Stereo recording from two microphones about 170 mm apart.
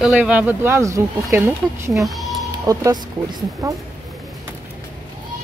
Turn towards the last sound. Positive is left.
turn(degrees=-20)  # may be behind; listen again after turning